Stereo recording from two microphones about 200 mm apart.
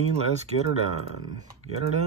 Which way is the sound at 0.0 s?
30° right (ahead or behind).